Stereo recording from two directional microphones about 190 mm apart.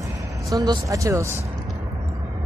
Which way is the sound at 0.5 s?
20° right (ahead or behind).